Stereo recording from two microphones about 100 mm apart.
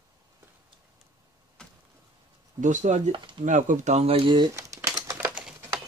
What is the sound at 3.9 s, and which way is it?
Speech, 80° right.